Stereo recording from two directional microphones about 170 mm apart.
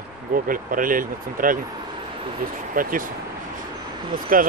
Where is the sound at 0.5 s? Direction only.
55° right (ahead or behind).